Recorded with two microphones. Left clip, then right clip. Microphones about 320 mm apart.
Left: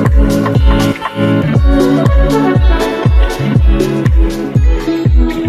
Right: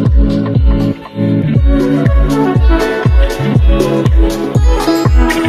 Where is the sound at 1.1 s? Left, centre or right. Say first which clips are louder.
Left 3 dB; left.